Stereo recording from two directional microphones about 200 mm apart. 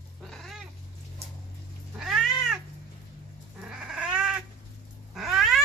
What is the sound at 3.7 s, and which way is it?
Cat, 5° right (ahead or behind).